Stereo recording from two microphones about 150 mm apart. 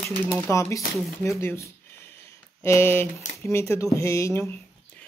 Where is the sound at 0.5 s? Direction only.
20° left (ahead or behind).